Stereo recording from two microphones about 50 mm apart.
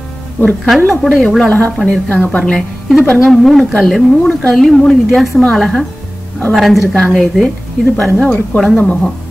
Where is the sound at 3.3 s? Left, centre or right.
Centre.